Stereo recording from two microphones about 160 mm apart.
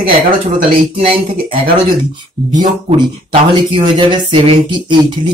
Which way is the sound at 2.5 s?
30° right (ahead or behind).